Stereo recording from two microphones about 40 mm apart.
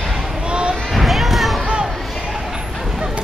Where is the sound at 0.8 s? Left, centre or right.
Centre.